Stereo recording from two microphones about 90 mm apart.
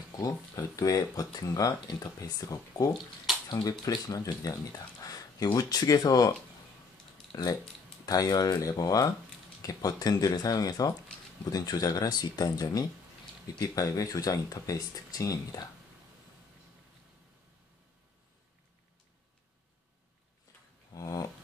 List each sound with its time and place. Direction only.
0.2 s speech: 40° left (ahead or behind)
7.3 s speech: 40° left (ahead or behind)
20.9 s a sound: 40° left (ahead or behind)